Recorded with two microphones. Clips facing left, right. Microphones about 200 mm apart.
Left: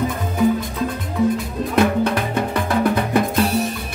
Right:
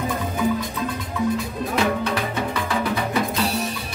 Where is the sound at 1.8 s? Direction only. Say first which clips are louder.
Left 6 dB; 50° left (ahead or behind).